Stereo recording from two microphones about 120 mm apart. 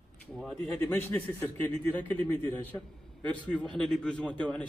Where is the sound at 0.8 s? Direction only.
20° left (ahead or behind).